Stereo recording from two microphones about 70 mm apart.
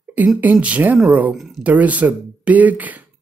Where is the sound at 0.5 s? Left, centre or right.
Centre.